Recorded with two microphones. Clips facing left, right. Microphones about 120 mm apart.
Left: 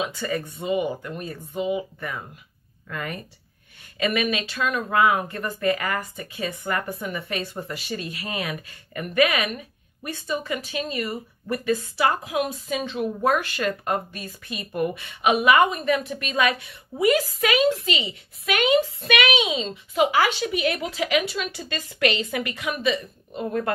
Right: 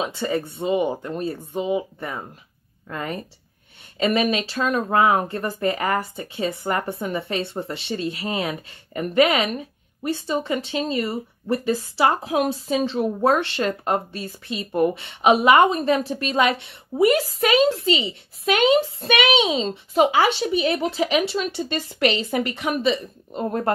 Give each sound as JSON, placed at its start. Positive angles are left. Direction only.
{"t": 0.0, "sound": "speech", "side_deg": -30}